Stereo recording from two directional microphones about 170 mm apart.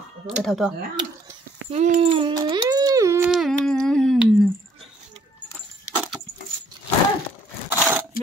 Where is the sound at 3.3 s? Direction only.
Centre (ahead or behind).